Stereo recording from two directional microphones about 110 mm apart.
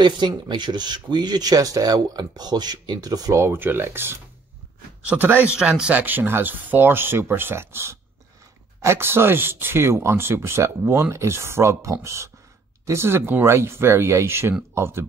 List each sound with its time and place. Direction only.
0.0 s a man's voice: 45° right (ahead or behind); by 15.0 s 25° right (ahead or behind)